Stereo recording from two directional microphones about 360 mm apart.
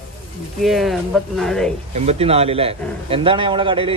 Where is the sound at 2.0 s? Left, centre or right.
Centre.